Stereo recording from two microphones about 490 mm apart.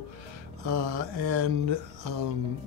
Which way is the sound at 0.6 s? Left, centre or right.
Right.